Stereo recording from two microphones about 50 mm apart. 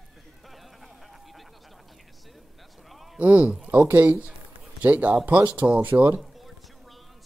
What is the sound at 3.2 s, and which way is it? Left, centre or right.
Speech, right.